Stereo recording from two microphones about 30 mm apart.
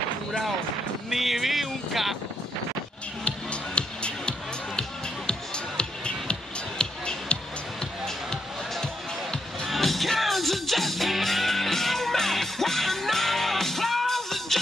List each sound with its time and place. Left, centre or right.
1.1 s speech: centre
3.3 s music: left
5.8 s music: left
8.8 s music: left
9.8 s music: centre